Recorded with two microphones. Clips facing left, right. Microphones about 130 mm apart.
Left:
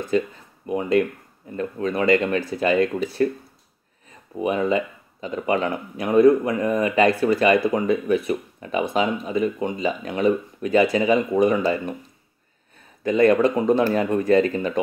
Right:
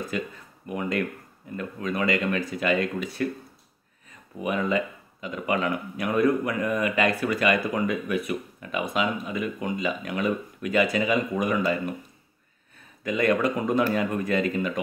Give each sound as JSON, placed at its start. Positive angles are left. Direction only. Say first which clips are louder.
{"t": 0.1, "sound": "speech", "louder": "left 9 dB", "side_deg": 30}
{"t": 4.4, "sound": "speech", "louder": "left 4 dB", "side_deg": 30}
{"t": 13.0, "sound": "speech", "louder": "left 6 dB", "side_deg": 30}